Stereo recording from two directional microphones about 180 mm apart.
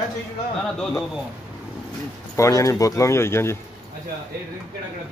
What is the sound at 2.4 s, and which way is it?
Speech, 20° left (ahead or behind).